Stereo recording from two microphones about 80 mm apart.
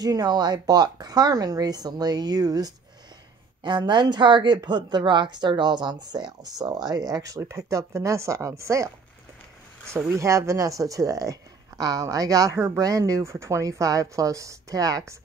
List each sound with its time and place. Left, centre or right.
0.0 s a woman's voice: right
3.6 s a woman's voice: right